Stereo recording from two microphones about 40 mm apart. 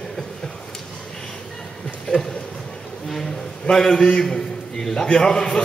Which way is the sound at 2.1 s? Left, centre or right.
Left.